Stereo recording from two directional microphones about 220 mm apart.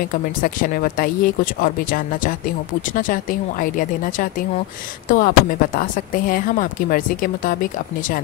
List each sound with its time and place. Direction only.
0.4 s speech: 40° left (ahead or behind)